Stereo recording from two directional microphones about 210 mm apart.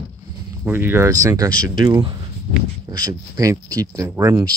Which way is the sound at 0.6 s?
10° right (ahead or behind).